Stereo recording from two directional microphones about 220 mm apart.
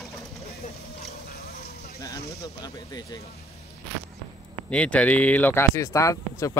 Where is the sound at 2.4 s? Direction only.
15° left (ahead or behind).